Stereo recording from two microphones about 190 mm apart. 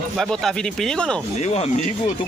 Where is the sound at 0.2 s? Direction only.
Centre (ahead or behind).